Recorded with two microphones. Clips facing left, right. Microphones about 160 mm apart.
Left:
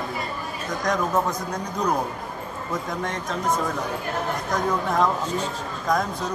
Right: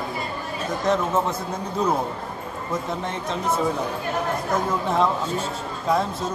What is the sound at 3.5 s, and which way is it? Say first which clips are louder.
Speech: right 2 dB; 5° right (ahead or behind).